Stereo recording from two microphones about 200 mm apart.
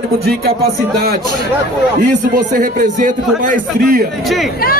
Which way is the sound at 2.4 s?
40° right (ahead or behind).